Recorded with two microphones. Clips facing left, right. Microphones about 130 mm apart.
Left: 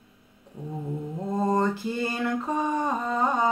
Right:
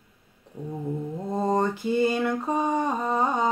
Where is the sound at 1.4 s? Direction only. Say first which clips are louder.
Right 1 dB; 20° right (ahead or behind).